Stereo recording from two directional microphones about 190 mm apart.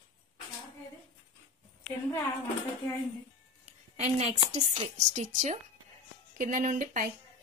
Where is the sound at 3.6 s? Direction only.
35° right (ahead or behind).